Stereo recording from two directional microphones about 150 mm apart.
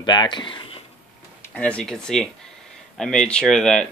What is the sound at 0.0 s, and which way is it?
Speech, 30° left (ahead or behind).